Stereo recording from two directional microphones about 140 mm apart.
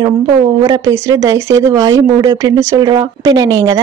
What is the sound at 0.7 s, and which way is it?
Speech, 20° right (ahead or behind).